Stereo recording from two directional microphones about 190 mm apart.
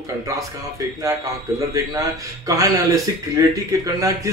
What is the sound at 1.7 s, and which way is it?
Speech, 20° right (ahead or behind).